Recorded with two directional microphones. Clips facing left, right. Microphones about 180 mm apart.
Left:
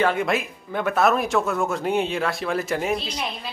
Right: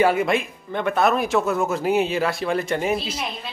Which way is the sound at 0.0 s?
5° right (ahead or behind).